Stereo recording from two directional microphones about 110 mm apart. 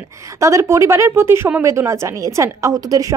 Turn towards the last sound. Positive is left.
turn(degrees=-30)  # may be behind; listen again after turning